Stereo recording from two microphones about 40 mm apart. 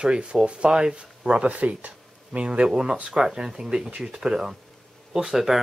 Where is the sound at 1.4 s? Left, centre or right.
Right.